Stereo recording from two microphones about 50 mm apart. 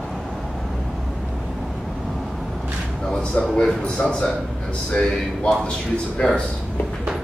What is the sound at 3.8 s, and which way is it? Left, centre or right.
Speech, left.